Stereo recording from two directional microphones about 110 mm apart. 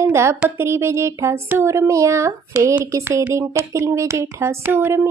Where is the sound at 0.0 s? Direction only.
25° right (ahead or behind).